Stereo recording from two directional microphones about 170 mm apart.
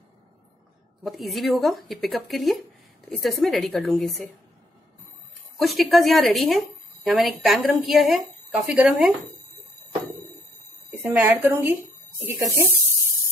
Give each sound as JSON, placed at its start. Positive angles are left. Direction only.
{"t": 1.0, "sound": "speech", "side_deg": 0}
{"t": 5.6, "sound": "speech", "side_deg": 0}
{"t": 10.9, "sound": "a woman's voice", "side_deg": -10}